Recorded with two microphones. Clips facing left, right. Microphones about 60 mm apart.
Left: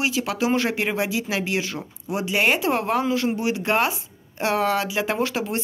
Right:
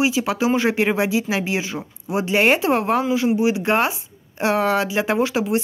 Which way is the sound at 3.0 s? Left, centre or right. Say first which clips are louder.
Right 4 dB; centre.